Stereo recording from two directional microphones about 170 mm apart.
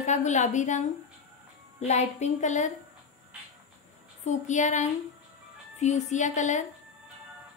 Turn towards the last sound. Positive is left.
turn(degrees=45)  # may be behind; listen again after turning